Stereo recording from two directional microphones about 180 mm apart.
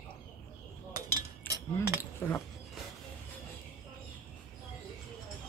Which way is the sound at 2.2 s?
10° left (ahead or behind).